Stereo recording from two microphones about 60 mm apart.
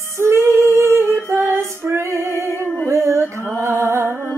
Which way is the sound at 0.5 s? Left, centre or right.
Right.